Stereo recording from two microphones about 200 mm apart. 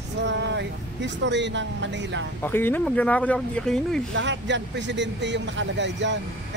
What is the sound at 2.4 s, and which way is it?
Speech, 10° left (ahead or behind).